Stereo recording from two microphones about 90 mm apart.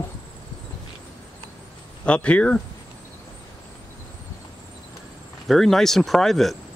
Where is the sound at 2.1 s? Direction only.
15° left (ahead or behind).